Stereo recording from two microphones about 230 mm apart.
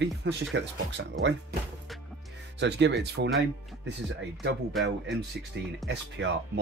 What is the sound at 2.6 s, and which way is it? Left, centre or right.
Speech, right.